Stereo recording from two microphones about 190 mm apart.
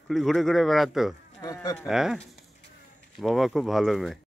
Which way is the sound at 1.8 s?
Centre (ahead or behind).